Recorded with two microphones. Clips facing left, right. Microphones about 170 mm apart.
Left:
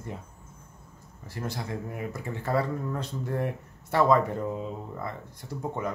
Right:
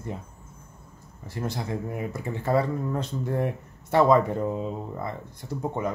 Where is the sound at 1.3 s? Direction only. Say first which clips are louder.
Right 3 dB; 25° right (ahead or behind).